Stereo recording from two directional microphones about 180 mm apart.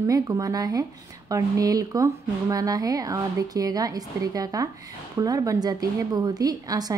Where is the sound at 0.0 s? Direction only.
20° right (ahead or behind).